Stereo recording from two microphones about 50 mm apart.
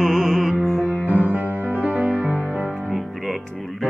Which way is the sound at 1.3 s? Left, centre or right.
Right.